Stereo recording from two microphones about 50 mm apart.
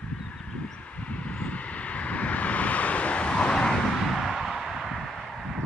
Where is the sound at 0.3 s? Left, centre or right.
Left.